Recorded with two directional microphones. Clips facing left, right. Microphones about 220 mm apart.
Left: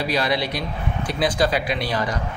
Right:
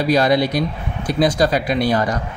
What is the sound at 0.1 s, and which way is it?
Speech, 45° right (ahead or behind).